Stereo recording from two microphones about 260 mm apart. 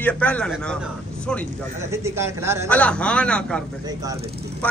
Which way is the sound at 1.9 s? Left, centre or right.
Centre.